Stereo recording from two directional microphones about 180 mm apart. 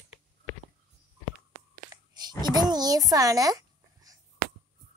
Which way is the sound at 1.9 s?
20° right (ahead or behind).